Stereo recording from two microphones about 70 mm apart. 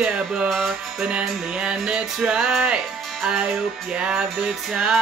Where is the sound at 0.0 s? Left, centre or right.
Centre.